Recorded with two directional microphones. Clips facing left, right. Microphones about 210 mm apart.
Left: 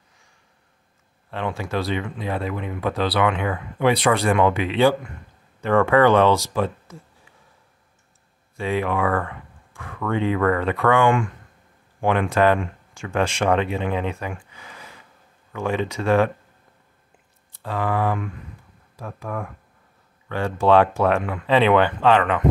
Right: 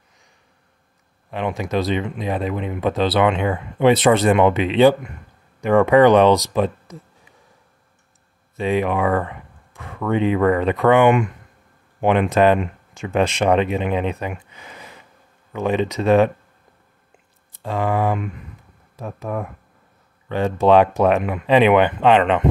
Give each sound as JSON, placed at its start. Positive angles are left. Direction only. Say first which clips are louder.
{"t": 1.3, "sound": "speech", "louder": "right 4 dB", "side_deg": -15}
{"t": 8.5, "sound": "speech", "louder": "right 3 dB", "side_deg": -20}
{"t": 17.5, "sound": "speech", "louder": "right 3 dB", "side_deg": -20}